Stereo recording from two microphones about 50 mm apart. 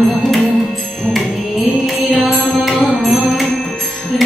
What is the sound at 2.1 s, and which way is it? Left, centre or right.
Music, centre.